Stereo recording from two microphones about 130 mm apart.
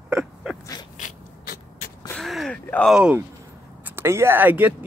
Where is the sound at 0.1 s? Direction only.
5° right (ahead or behind).